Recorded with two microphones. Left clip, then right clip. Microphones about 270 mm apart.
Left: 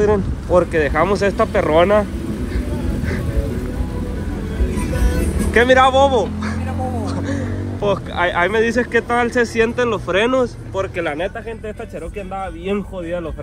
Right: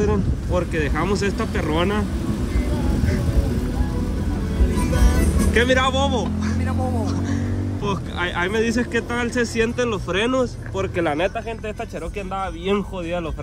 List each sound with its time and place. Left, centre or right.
0.6 s speech: centre
4.9 s music: centre
7.1 s speech: centre
10.8 s speech: right
12.4 s speech: centre